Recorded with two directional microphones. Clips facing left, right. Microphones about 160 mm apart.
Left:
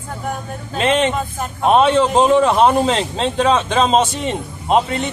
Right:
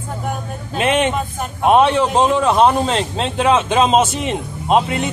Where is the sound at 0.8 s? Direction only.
15° right (ahead or behind).